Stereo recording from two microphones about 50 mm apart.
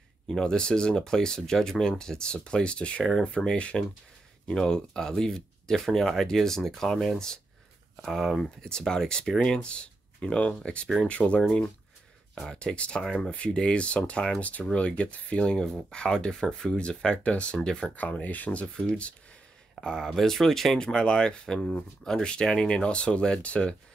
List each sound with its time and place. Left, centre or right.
0.3 s speech: centre
8.5 s speech: centre
13.0 s speech: centre
13.3 s speech: left
15.6 s speech: centre
17.6 s speech: centre
17.8 s speech: left
19.7 s speech: centre
20.8 s speech: centre